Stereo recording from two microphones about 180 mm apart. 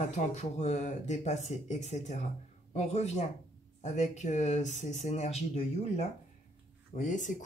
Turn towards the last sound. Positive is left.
turn(degrees=45)  # may be behind; listen again after turning